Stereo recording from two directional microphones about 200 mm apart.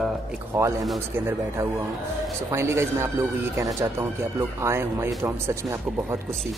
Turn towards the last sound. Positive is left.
turn(degrees=-15)  # may be behind; listen again after turning